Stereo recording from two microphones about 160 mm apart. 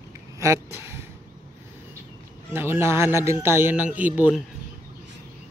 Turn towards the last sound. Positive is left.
turn(degrees=-10)  # may be behind; listen again after turning